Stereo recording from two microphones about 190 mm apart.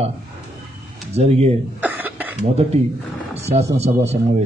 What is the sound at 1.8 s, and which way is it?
Cough, 10° right (ahead or behind).